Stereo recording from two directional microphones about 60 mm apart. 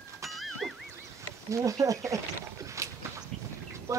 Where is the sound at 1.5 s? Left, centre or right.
Right.